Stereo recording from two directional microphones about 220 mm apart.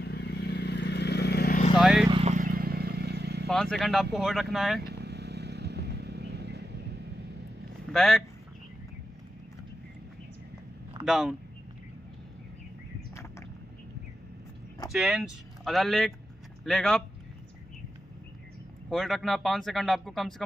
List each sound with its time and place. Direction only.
0.0 s vehicle: 45° left (ahead or behind)
1.8 s vehicle: centre (ahead or behind)
2.0 s vehicle: 30° right (ahead or behind); by 3.4 s 50° right (ahead or behind)
3.4 s speech: centre (ahead or behind)
4.8 s vehicle: 45° right (ahead or behind)
7.9 s speech: centre (ahead or behind)
11.1 s speech: centre (ahead or behind)
14.9 s speech: centre (ahead or behind)
18.9 s speech: centre (ahead or behind)